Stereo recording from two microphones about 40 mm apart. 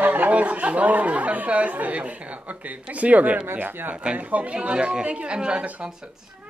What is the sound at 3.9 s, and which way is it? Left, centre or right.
Speech, right.